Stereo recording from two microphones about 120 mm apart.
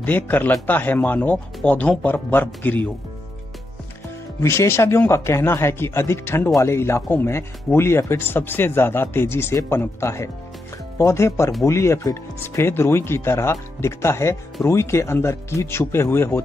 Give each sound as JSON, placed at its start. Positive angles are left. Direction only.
{"t": 0.0, "sound": "speech", "side_deg": 15}
{"t": 4.4, "sound": "speech", "side_deg": 20}